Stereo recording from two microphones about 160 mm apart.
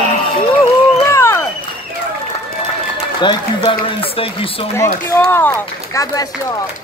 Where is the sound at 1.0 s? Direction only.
15° left (ahead or behind).